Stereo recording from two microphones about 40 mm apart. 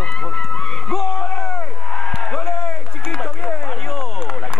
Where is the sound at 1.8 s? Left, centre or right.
Centre.